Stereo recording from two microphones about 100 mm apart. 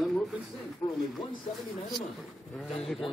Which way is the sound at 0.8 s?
40° left (ahead or behind).